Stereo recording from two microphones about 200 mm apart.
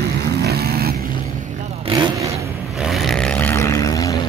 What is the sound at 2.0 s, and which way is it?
Vehicle, 15° right (ahead or behind).